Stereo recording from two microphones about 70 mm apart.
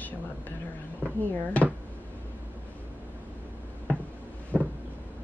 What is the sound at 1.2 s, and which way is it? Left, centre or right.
Speech, left.